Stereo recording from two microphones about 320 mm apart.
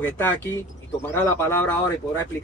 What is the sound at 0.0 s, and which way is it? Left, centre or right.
A man's voice, centre.